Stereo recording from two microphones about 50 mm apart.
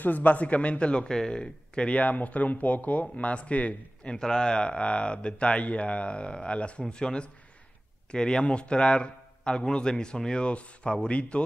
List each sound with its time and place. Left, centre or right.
0.0 s speech: left
4.2 s speech: centre